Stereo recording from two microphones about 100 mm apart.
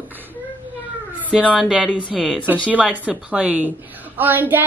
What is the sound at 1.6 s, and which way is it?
A woman's voice, 10° right (ahead or behind).